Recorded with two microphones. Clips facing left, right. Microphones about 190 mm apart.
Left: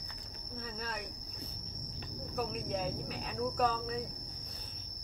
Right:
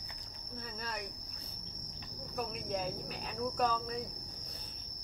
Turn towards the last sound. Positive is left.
turn(degrees=0)  # may be behind; listen again after turning